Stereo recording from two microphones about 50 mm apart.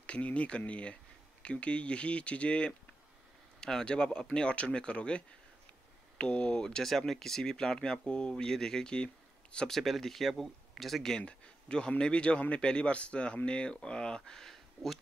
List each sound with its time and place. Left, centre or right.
0.0 s speech: left
6.6 s speech: centre
9.7 s speech: centre
11.2 s a sound: centre
12.0 s speech: left